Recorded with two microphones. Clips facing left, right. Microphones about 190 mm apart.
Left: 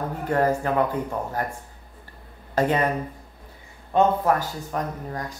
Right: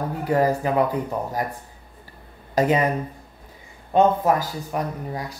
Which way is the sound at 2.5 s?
15° right (ahead or behind).